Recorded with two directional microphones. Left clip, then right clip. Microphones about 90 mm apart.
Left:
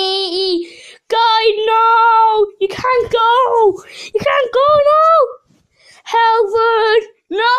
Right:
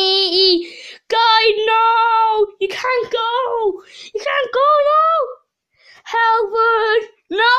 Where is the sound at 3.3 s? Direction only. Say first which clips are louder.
Left 7 dB; 75° left (ahead or behind); by 3.7 s 60° left (ahead or behind).